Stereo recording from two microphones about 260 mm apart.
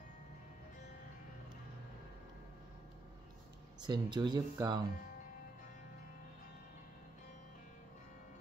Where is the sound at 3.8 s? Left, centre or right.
Centre.